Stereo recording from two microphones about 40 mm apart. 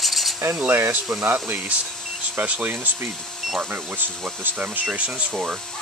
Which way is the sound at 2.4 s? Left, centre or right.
Right.